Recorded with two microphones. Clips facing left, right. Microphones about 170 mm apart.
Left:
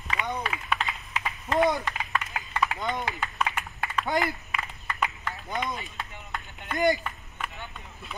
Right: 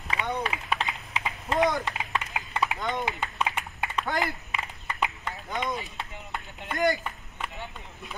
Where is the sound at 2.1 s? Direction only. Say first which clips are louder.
Left 1 dB; 20° right (ahead or behind).